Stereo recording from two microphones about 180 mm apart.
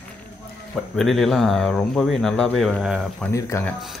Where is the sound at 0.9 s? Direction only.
Centre (ahead or behind).